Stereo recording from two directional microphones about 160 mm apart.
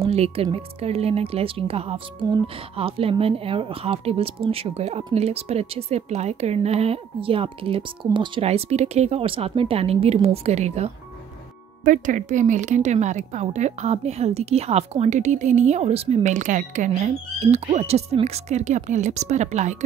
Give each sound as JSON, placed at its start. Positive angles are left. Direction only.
{"t": 0.0, "sound": "speech", "side_deg": -40}
{"t": 11.8, "sound": "speech", "side_deg": -55}